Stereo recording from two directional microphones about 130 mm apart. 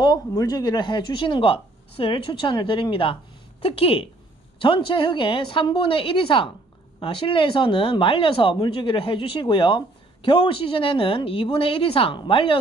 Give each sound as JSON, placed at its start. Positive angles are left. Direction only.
{"t": 0.0, "sound": "speech", "side_deg": 30}